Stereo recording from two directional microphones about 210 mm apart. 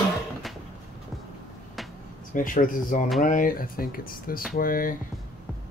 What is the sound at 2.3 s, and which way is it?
Speech, 40° left (ahead or behind).